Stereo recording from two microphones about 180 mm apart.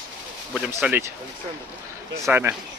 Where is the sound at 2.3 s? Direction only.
10° right (ahead or behind).